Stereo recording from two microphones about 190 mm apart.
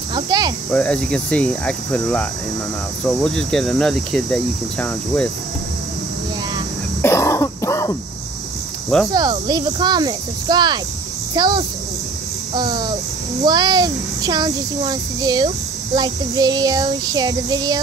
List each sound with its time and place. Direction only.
0.1 s cricket: 20° right (ahead or behind)
0.7 s speech: 5° left (ahead or behind)
7.0 s throat clearing: 15° left (ahead or behind)
9.1 s a child's voice: 20° right (ahead or behind)